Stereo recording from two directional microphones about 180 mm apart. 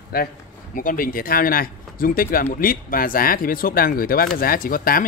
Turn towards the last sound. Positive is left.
turn(degrees=55)  # may be behind; listen again after turning